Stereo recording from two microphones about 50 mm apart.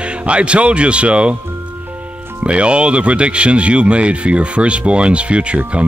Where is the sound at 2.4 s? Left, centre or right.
Right.